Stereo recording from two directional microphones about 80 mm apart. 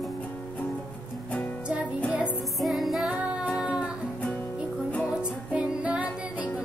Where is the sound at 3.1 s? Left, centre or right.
Centre.